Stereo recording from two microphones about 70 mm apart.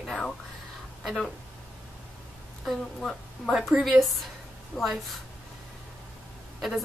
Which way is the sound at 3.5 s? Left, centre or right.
Centre.